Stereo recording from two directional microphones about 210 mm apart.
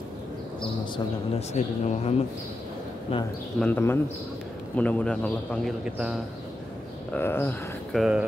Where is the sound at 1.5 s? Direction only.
35° left (ahead or behind).